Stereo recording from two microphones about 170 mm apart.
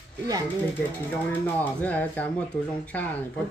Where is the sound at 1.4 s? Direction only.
10° left (ahead or behind).